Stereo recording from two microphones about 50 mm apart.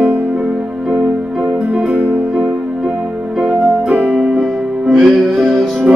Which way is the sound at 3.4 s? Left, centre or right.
Right.